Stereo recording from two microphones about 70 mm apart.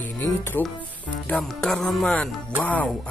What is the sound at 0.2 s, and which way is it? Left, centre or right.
Speech, left.